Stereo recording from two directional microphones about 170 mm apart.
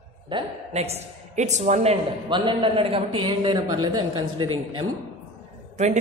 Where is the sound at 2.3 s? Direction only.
25° right (ahead or behind).